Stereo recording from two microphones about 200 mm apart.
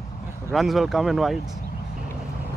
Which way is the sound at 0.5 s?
Centre (ahead or behind).